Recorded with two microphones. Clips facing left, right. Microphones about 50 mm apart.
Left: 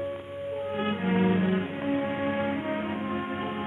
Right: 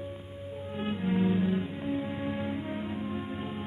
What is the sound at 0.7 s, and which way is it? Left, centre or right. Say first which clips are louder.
Music: left 2 dB; left.